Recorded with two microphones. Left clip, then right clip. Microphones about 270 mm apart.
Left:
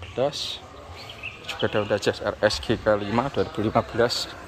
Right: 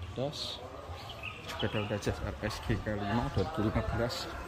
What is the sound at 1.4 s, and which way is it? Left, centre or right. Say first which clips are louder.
A man's voice: left 11 dB; centre.